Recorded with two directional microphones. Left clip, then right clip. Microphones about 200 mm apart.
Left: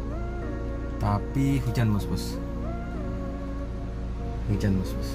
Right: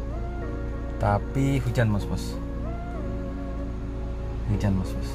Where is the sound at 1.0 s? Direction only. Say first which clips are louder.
Right 3 dB; 15° right (ahead or behind).